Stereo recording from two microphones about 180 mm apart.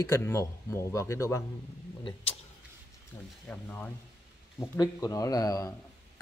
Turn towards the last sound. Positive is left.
turn(degrees=20)  # may be behind; listen again after turning